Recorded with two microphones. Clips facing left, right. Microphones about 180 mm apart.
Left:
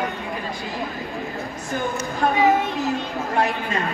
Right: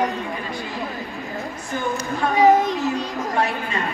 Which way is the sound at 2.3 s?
40° right (ahead or behind).